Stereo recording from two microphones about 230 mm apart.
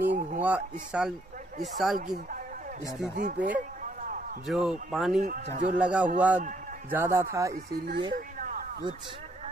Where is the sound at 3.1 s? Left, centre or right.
Right.